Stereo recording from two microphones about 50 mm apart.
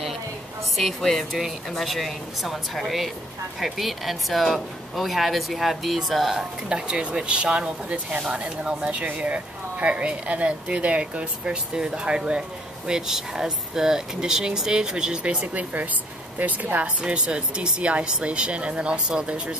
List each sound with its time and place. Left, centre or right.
0.7 s a woman's voice: centre
6.3 s speech: centre
9.0 s speech: right